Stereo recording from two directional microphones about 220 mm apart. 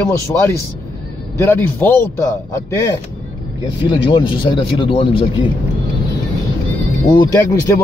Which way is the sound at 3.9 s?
20° left (ahead or behind).